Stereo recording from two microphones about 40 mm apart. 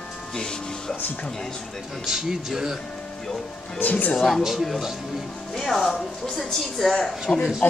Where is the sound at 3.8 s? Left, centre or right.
Left.